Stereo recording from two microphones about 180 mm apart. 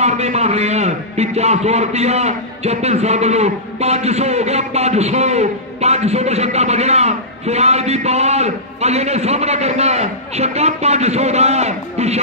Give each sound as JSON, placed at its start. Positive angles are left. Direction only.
{"t": 0.0, "sound": "a man's voice", "side_deg": -40}